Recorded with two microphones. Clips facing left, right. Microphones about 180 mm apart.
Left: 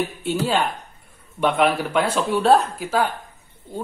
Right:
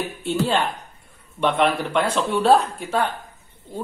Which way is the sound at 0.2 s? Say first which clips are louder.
Right 2 dB; 5° left (ahead or behind).